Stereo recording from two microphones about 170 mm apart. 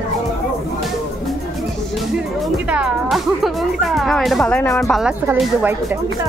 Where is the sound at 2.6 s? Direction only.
5° right (ahead or behind).